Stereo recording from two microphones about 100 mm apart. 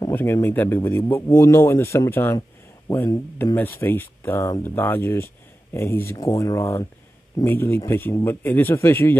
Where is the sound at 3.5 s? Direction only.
20° left (ahead or behind).